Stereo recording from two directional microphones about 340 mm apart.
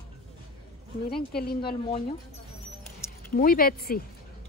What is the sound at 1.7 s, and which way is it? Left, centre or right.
Speech, centre.